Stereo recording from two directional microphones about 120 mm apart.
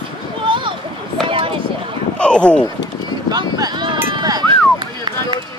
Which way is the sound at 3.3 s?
35° right (ahead or behind).